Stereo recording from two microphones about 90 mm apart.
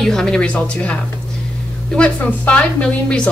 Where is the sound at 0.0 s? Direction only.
5° left (ahead or behind).